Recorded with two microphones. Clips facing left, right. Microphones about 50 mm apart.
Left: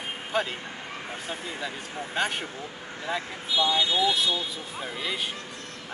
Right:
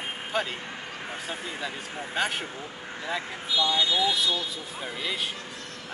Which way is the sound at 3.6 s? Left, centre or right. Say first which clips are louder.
Left 1 dB; left.